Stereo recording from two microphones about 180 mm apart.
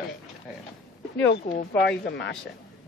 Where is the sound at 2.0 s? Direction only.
65° left (ahead or behind).